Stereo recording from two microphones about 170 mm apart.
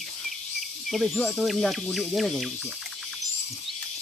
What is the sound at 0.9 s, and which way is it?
Speech, centre (ahead or behind).